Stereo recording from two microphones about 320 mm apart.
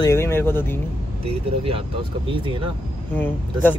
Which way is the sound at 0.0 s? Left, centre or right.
Centre.